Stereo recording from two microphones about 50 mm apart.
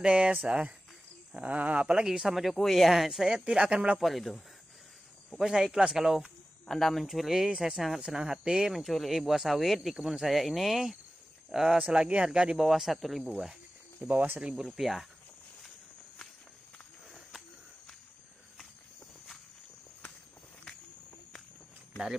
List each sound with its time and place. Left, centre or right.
0.0 s speech: right
1.3 s speech: right
2.0 s speech: centre
3.4 s speech: centre
4.0 s speech: centre
5.4 s speech: centre
6.7 s speech: centre
8.7 s speech: centre
12.6 s speech: centre
14.0 s speech: right
14.8 s speech: centre